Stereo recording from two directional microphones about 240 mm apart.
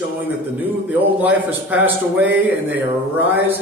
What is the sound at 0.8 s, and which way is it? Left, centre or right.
A man's voice, centre.